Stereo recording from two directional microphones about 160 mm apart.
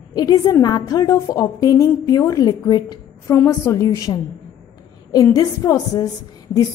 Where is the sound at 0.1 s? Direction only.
25° left (ahead or behind).